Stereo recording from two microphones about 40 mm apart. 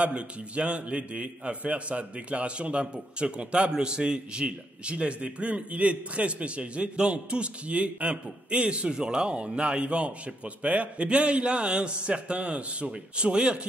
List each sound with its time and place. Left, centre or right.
0.0 s a man's voice: right